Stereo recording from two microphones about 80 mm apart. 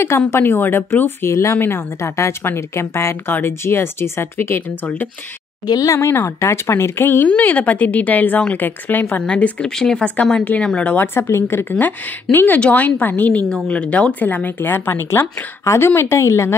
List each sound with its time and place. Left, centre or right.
0.3 s speech: left
5.7 s speech: left
6.0 s speech: left
7.2 s speech: centre
9.2 s speech: centre
10.9 s speech: left